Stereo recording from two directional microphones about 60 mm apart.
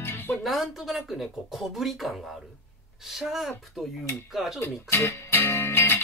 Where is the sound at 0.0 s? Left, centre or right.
Left.